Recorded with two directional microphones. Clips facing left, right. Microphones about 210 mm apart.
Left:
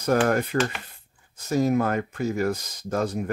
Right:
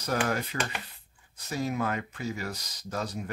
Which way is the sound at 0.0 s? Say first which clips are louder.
Left 8 dB; 50° left (ahead or behind).